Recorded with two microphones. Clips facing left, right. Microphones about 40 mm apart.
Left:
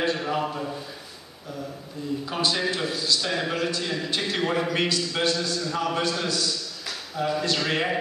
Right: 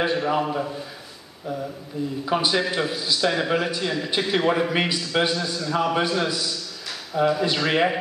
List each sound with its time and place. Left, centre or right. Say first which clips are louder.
0.0 s a man's voice: right 3 dB; centre
2.2 s a man's voice: right 4 dB; centre